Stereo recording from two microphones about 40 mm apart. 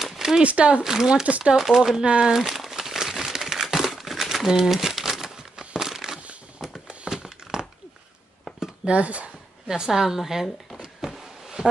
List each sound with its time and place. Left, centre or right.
0.0 s a sound: centre
0.4 s speech: right
0.8 s a woman's voice: centre
1.2 s speech: right
1.6 s a woman's voice: centre
2.0 s speech: right
2.3 s crumpling: centre
6.6 s a sound: centre
8.8 s speech: right
9.7 s a woman's voice: centre
11.0 s a sound: centre